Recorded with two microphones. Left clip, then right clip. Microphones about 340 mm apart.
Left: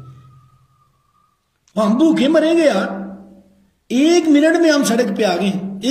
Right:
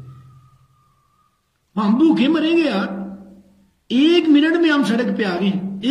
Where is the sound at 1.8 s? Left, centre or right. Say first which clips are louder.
Left 2 dB; centre.